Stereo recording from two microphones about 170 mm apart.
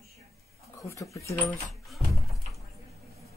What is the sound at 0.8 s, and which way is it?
Speech, 20° left (ahead or behind).